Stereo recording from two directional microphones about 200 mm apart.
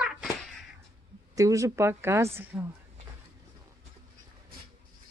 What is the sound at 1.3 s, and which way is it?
Speech, 15° right (ahead or behind).